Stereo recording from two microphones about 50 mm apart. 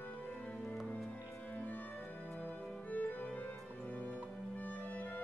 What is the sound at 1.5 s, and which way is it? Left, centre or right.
Music, left.